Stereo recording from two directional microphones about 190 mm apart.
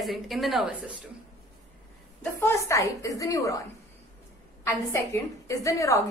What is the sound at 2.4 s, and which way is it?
A woman's voice, 15° left (ahead or behind).